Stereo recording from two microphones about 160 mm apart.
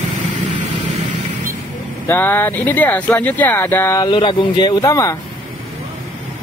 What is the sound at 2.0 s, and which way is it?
Speech, 15° left (ahead or behind).